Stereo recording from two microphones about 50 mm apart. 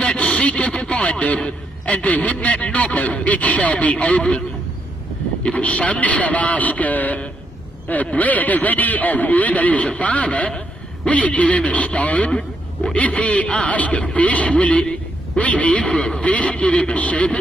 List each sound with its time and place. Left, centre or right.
0.0 s speech: centre
5.4 s speech: left
12.3 s radio: centre
12.9 s speech: left